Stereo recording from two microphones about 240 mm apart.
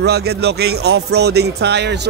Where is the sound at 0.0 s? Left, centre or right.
Right.